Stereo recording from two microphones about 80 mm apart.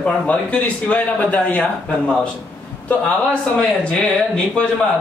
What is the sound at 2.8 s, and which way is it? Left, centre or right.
Speech, centre.